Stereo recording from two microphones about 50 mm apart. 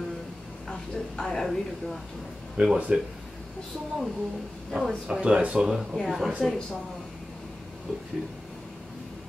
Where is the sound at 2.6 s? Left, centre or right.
Right.